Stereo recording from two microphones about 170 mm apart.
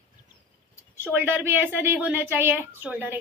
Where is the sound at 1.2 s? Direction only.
15° right (ahead or behind).